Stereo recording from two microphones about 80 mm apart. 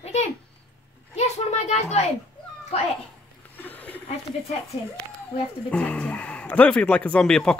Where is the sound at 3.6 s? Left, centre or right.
Left.